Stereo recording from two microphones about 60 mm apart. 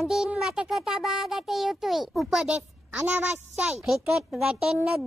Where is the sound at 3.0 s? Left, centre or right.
Right.